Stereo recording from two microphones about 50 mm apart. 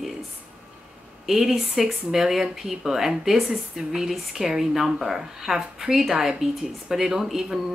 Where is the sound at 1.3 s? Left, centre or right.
Centre.